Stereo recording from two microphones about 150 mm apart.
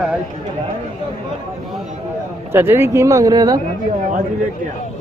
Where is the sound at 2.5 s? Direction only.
15° right (ahead or behind).